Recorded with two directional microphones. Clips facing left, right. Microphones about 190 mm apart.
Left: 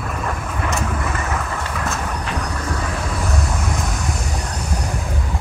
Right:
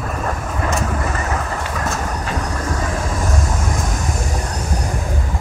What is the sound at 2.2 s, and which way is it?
Vehicle, 45° right (ahead or behind).